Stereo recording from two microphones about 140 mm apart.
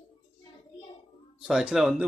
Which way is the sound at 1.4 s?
5° right (ahead or behind).